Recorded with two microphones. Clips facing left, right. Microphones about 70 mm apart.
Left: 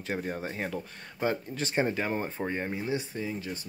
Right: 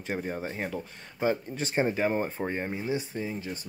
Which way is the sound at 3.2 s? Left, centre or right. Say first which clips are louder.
Right 1 dB; right.